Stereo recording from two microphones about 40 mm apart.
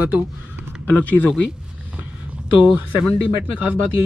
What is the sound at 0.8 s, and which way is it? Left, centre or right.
Speech, left.